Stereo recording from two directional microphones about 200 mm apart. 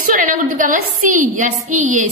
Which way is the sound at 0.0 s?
40° right (ahead or behind).